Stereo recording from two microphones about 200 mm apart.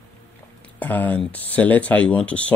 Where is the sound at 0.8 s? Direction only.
10° left (ahead or behind).